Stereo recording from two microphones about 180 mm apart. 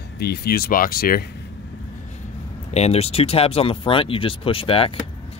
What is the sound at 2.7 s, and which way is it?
Speech, 35° left (ahead or behind).